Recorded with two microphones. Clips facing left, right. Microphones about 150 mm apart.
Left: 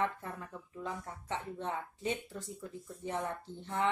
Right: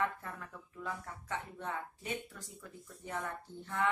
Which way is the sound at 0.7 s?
25° left (ahead or behind).